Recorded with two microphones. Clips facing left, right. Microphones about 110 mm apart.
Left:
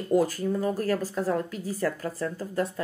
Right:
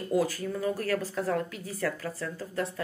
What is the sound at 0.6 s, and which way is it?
A woman's voice, 35° left (ahead or behind).